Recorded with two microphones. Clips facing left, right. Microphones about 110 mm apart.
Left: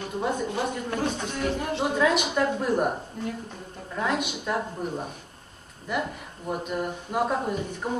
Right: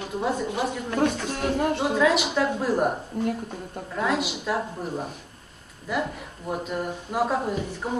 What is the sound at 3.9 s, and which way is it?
Speech, 5° right (ahead or behind).